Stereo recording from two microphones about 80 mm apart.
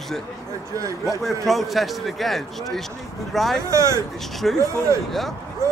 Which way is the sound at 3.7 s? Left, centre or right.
Right.